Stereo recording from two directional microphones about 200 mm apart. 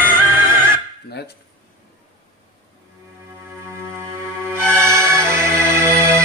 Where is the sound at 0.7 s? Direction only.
55° left (ahead or behind).